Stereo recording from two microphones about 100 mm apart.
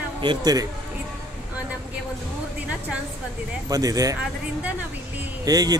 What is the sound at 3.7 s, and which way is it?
Speech, 35° right (ahead or behind).